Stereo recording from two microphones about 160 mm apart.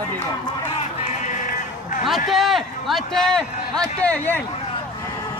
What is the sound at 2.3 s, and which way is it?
Speech, centre (ahead or behind).